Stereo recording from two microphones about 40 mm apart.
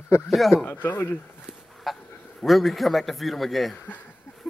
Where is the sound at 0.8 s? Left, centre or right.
Left.